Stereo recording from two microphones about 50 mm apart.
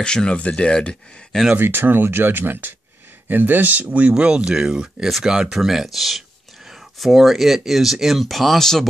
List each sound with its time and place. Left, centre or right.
0.0 s speech: centre
1.6 s speech: right; by 8.8 s centre